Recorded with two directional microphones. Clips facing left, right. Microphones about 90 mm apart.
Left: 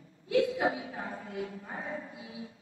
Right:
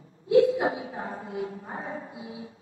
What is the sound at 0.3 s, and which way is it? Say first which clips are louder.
A man's voice: right 7 dB; 30° right (ahead or behind).